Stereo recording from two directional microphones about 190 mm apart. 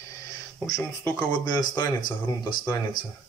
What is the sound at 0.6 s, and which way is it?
Speech, 15° left (ahead or behind).